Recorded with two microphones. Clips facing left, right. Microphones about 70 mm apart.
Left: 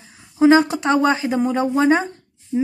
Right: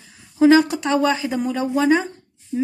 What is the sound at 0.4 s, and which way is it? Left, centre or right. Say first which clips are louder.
A woman's voice: even; left.